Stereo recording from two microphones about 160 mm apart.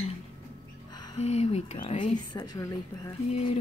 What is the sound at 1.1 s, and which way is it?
Speech, 40° left (ahead or behind).